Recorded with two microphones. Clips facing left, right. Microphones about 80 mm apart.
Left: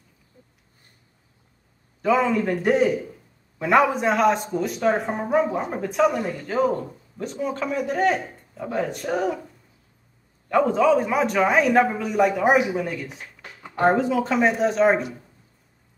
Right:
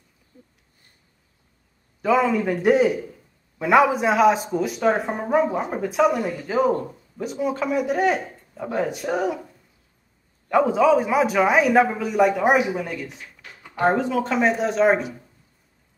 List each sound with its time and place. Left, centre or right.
2.0 s a man's voice: centre
10.5 s a man's voice: centre
13.4 s a sound: left
13.8 s a man's voice: centre